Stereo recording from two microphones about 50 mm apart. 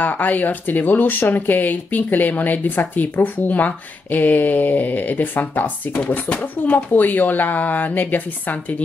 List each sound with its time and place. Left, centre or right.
0.0 s speech: left